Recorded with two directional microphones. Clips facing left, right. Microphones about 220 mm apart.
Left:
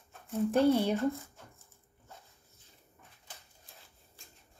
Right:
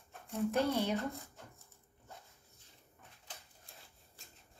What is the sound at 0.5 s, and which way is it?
Speech, 30° left (ahead or behind).